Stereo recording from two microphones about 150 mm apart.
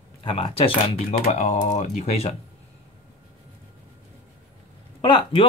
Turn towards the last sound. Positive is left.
turn(degrees=35)  # may be behind; listen again after turning